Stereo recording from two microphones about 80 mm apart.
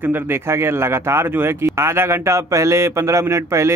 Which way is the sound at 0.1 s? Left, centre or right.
Right.